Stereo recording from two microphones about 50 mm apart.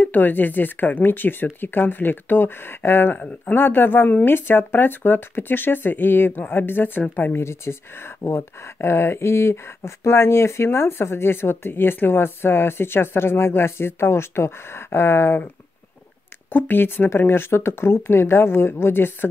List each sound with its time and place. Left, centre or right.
0.0 s speech: left
3.2 s speech: left
3.5 s speech: left
7.3 s speech: left
16.5 s speech: left